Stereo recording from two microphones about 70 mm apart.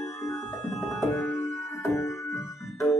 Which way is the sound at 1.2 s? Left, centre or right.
Left.